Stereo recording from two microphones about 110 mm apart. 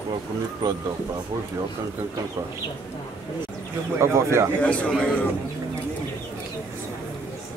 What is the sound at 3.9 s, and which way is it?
Speech, 25° right (ahead or behind).